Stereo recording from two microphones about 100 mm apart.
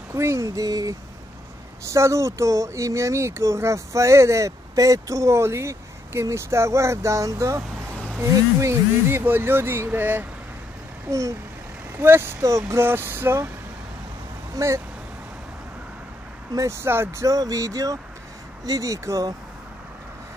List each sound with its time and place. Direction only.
0.1 s speech: 30° right (ahead or behind)
11.1 s speech: 30° right (ahead or behind)
14.5 s speech: 30° right (ahead or behind)
16.5 s speech: 30° right (ahead or behind)